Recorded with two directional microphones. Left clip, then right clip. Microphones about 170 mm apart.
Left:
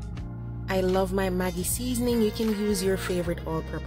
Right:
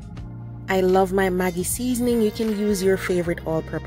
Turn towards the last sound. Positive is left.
turn(degrees=0)  # may be behind; listen again after turning